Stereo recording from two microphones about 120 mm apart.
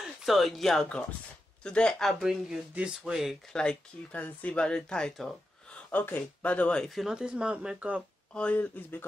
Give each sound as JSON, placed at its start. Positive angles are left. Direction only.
{"t": 0.0, "sound": "speech", "side_deg": 0}
{"t": 3.5, "sound": "speech", "side_deg": 10}
{"t": 5.9, "sound": "speech", "side_deg": 15}
{"t": 7.1, "sound": "speech", "side_deg": -10}
{"t": 8.4, "sound": "speech", "side_deg": 15}